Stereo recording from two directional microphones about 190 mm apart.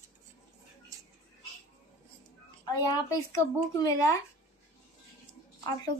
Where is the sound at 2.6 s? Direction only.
20° left (ahead or behind).